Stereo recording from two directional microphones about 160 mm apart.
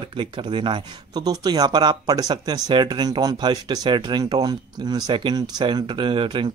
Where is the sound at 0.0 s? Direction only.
35° right (ahead or behind).